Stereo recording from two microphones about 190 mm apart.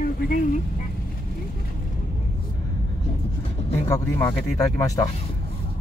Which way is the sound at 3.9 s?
10° left (ahead or behind).